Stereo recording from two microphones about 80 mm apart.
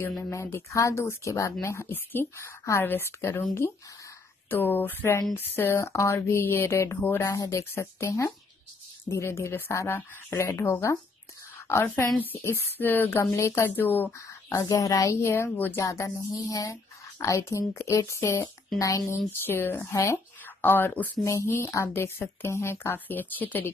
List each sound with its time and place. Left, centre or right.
0.0 s speech: left
11.6 s a sound: left
12.2 s speech: left
13.2 s speech: left
13.7 s speech: left
14.7 s speech: left
15.8 s speech: left
21.2 s speech: left